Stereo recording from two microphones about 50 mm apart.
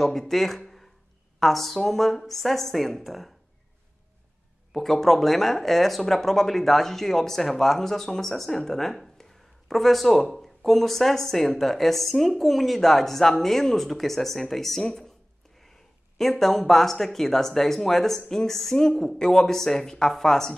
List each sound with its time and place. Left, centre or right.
0.0 s speech: centre
4.7 s speech: centre